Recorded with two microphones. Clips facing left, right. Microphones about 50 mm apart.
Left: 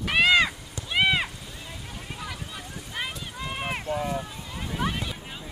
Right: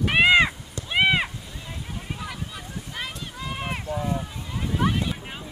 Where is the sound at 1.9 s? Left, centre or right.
Centre.